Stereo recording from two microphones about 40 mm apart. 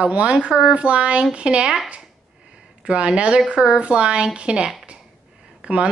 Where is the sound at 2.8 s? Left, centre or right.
Right.